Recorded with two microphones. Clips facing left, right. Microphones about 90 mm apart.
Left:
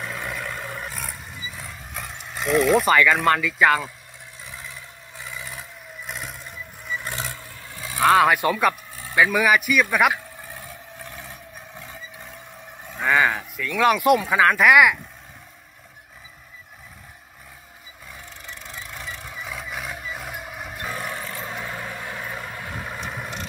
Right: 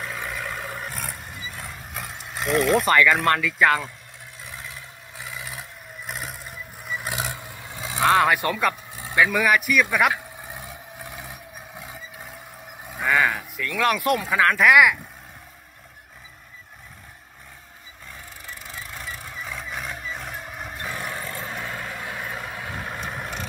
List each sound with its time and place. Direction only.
0.0 s a sound: centre (ahead or behind)
4.5 s vehicle: centre (ahead or behind); by 8.1 s 20° right (ahead or behind)
8.1 s speech: 5° left (ahead or behind)
10.1 s a sound: 20° right (ahead or behind)
13.1 s speech: centre (ahead or behind)
18.1 s vehicle: 5° right (ahead or behind)